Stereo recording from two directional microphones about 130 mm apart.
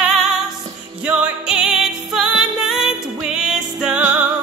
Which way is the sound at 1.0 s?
5° right (ahead or behind).